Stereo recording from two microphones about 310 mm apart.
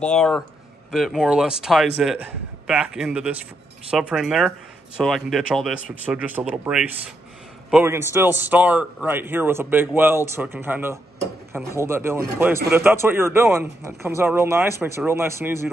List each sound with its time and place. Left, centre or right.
0.0 s a man's voice: centre